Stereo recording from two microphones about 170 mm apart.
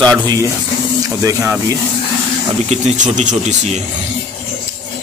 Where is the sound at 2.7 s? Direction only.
45° right (ahead or behind).